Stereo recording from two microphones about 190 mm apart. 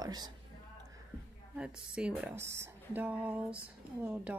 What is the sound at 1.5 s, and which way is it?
A woman's voice, 5° right (ahead or behind).